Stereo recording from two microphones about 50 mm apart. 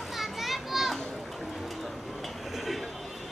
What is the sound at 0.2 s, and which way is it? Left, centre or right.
Children playing, centre.